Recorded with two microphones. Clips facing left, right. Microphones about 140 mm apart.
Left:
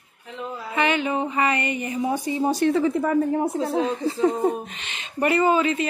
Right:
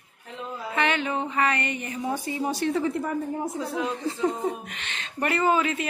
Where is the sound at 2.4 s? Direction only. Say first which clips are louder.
Left 6 dB; 45° left (ahead or behind).